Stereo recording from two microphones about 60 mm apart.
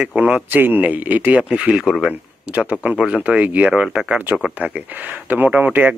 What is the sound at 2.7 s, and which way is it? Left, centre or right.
Speech, right.